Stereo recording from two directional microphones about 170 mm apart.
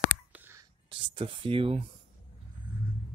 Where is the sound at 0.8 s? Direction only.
30° right (ahead or behind).